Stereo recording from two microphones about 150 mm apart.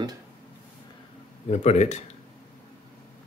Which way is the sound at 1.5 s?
50° left (ahead or behind).